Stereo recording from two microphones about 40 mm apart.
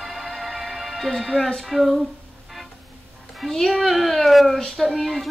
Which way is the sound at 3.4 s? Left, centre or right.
Centre.